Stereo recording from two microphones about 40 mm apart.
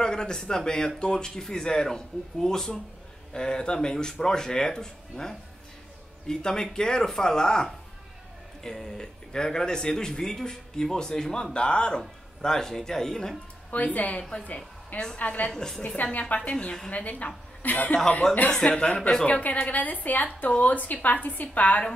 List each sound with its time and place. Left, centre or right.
0.0 s speech: centre
8.8 s speech: centre
12.4 s speech: centre
13.7 s a woman's voice: left
16.3 s speech: left
16.9 s a woman's voice: left
18.2 s speech: centre
18.6 s a woman's voice: left